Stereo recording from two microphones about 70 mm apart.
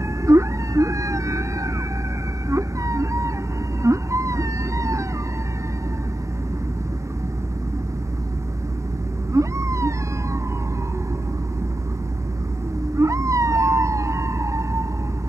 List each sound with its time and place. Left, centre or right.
0.2 s whale vocalization: right
2.5 s a sound: right
9.3 s cat: right
12.9 s emergency vehicle: right